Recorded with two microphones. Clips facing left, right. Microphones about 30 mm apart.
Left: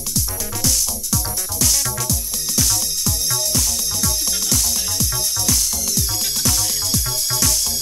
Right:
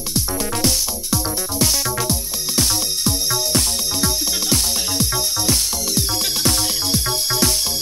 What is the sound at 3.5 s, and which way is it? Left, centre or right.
Music, right.